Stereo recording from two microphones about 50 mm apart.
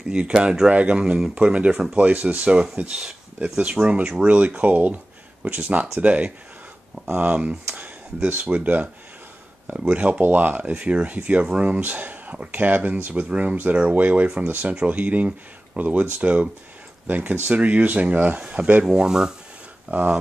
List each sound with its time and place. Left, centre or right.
0.1 s speech: right
7.7 s a sound: right
8.5 s speech: right
9.9 s speech: right
10.2 s speech: right
10.7 s speech: right
19.9 s speech: right